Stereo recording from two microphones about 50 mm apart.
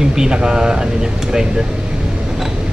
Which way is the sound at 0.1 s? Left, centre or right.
Centre.